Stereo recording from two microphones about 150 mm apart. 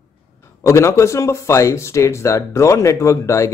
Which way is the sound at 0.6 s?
20° left (ahead or behind).